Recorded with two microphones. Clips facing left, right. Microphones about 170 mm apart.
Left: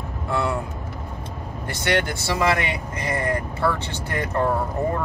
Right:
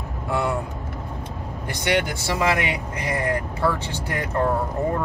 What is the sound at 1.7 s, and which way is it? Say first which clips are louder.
Speech: even; 15° right (ahead or behind).